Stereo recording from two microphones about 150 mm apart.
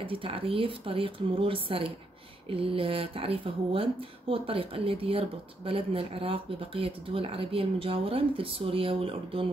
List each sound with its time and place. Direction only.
0.0 s speech: 35° right (ahead or behind)